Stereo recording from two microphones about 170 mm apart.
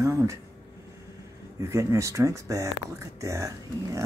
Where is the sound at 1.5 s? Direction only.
20° right (ahead or behind).